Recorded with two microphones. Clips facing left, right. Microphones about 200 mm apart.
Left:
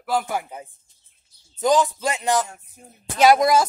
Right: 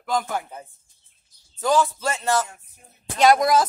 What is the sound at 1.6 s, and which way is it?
Speech, 15° left (ahead or behind).